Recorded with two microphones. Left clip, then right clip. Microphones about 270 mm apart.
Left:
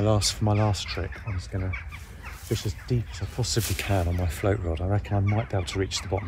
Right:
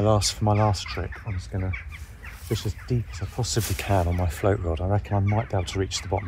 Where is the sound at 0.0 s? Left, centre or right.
Centre.